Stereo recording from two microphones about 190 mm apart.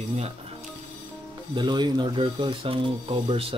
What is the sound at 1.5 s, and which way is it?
Speech, 25° right (ahead or behind).